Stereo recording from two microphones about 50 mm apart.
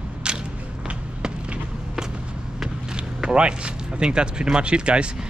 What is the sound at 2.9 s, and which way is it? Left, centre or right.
Speech, centre.